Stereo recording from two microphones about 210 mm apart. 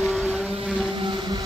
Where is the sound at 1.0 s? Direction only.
20° right (ahead or behind).